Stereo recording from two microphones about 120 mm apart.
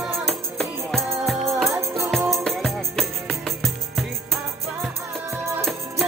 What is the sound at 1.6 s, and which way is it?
Music, 25° right (ahead or behind).